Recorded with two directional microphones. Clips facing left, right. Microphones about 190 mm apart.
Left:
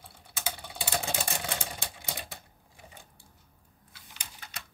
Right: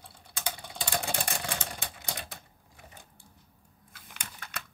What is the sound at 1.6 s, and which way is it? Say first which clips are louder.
Typewriter: even; 5° left (ahead or behind).